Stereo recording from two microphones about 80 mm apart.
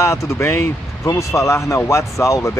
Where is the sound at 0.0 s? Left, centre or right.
Left.